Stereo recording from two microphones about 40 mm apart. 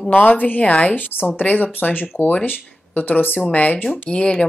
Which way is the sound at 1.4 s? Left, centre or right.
Left.